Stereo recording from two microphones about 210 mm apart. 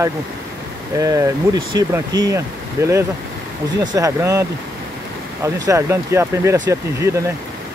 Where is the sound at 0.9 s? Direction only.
15° right (ahead or behind).